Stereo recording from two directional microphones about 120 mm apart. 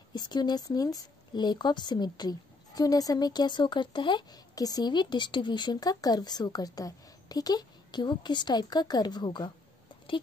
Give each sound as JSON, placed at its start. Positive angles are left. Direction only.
{"t": 0.1, "sound": "speech", "side_deg": 35}